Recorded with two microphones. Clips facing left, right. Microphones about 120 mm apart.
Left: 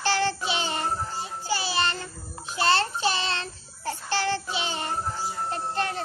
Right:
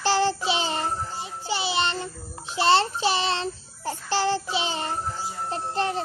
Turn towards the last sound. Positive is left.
turn(degrees=-25)  # may be behind; listen again after turning